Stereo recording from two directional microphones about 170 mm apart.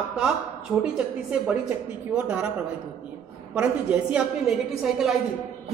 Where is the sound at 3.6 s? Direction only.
10° right (ahead or behind).